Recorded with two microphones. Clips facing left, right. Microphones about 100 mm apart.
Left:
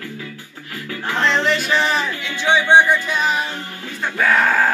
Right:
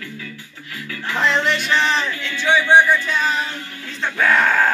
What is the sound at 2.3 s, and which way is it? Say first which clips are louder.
Music: even; 20° left (ahead or behind).